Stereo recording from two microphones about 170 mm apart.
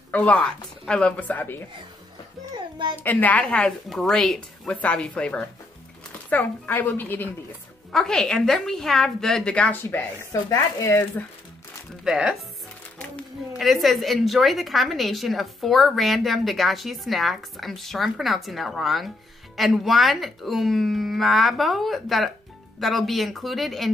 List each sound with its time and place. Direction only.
0.1 s a woman's voice: 10° left (ahead or behind)
2.5 s a sound: 30° right (ahead or behind)
3.0 s a woman's voice: 10° left (ahead or behind)
12.0 s speech: 5° right (ahead or behind)
13.6 s a woman's voice: centre (ahead or behind)